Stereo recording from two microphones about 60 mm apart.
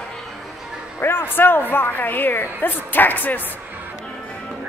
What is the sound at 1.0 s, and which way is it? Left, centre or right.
A woman's voice, left.